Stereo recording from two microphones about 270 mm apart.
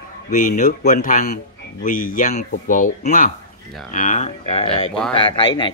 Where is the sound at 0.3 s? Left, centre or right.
Left.